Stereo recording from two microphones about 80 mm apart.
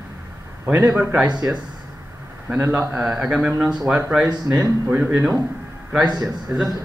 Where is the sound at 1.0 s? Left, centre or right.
Right.